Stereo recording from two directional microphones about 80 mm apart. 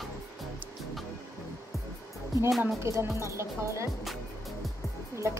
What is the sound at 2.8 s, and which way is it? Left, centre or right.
A woman's voice, right.